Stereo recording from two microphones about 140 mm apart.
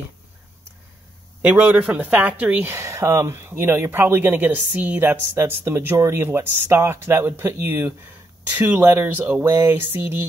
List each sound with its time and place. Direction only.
1.4 s speech: 10° right (ahead or behind)